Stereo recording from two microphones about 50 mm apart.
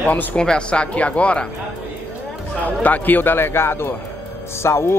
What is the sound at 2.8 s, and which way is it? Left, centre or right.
A man's voice, left.